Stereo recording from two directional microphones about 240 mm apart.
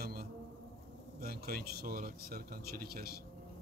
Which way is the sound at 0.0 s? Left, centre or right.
Right.